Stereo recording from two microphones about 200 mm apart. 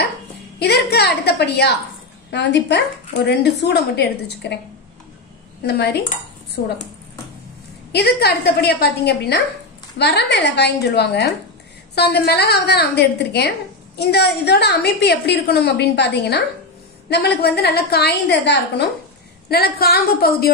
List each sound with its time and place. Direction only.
0.6 s a woman's voice: 55° left (ahead or behind)
5.6 s dishes: 55° left (ahead or behind)
7.9 s a woman's voice: 50° left (ahead or behind)